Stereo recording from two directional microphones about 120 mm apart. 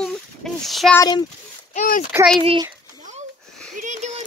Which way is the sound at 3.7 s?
85° right.